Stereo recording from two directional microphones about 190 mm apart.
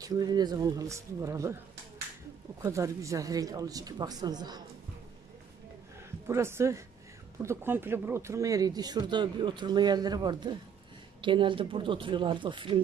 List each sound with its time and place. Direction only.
0.0 s speech: 20° right (ahead or behind)
2.6 s speech: 15° right (ahead or behind)
6.2 s a woman's voice: 15° right (ahead or behind)